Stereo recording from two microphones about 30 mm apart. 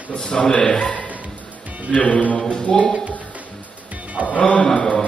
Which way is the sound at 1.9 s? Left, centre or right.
Left.